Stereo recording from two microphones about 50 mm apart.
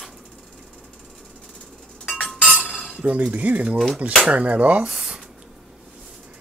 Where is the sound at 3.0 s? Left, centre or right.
Right.